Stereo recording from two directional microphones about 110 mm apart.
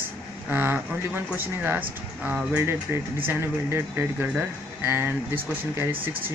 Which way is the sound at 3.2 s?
20° right (ahead or behind).